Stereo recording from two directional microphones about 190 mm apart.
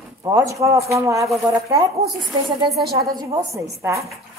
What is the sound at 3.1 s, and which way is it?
Speech, 15° right (ahead or behind).